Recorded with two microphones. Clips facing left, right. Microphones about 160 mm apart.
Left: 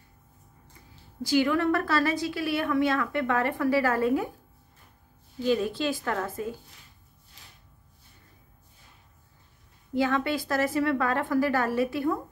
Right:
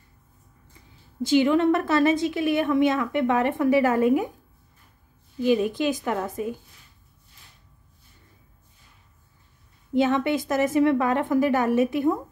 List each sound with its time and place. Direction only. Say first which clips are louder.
1.2 s a woman's voice: right 5 dB; 20° right (ahead or behind)
5.4 s speech: right 4 dB; 15° right (ahead or behind)
9.9 s a woman's voice: right 4 dB; 20° right (ahead or behind)